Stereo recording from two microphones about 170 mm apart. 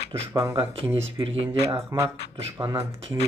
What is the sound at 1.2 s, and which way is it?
Speech, 35° right (ahead or behind).